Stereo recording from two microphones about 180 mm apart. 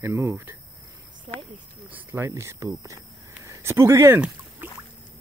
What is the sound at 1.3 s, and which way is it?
Speech, 35° right (ahead or behind).